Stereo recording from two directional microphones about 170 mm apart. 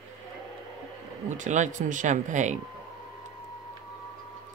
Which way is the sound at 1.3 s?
45° right (ahead or behind).